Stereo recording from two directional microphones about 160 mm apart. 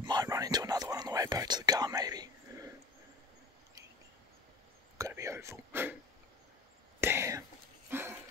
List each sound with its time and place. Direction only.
0.0 s whispering: 25° right (ahead or behind)
4.9 s whispering: 20° right (ahead or behind)
7.0 s whispering: 15° right (ahead or behind)
7.9 s dog: 15° right (ahead or behind)